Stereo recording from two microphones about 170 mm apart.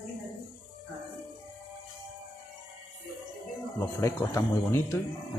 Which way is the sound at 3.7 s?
20° left (ahead or behind).